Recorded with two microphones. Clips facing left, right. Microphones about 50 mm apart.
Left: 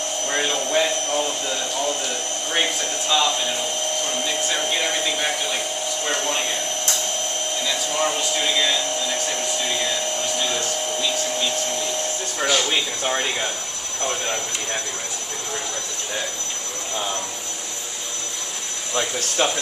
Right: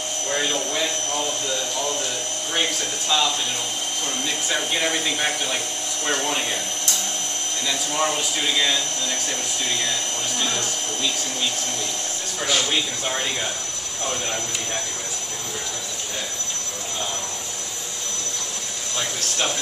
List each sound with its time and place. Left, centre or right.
0.3 s a sound: left
2.5 s speech: centre
4.5 s speech: centre
7.6 s speech: centre